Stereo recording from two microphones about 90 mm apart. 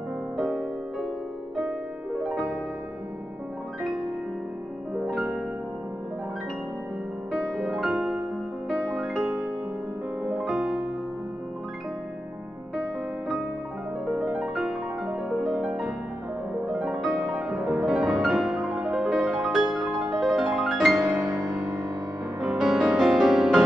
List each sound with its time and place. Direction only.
0.4 s music: 5° right (ahead or behind)
2.1 s music: centre (ahead or behind)
5.0 s music: 5° right (ahead or behind)
7.3 s music: 5° right (ahead or behind)
14.0 s music: 5° right (ahead or behind)
21.3 s music: 20° right (ahead or behind)
22.4 s music: 5° right (ahead or behind)